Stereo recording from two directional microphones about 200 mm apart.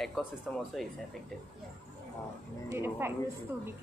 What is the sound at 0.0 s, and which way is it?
Speech, centre (ahead or behind).